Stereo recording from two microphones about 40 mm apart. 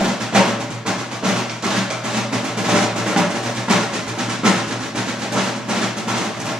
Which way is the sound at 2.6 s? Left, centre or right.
Centre.